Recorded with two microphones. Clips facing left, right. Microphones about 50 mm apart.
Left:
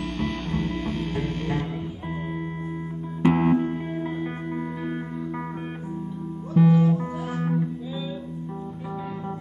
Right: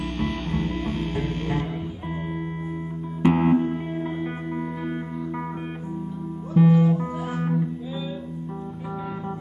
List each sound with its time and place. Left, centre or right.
0.2 s music: right
3.2 s music: right
3.4 s music: centre
6.5 s music: right
6.9 s music: centre